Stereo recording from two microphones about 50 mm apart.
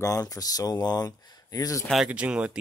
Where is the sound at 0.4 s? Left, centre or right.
Left.